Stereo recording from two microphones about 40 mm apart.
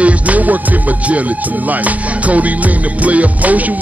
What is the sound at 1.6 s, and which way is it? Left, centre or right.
Music, right.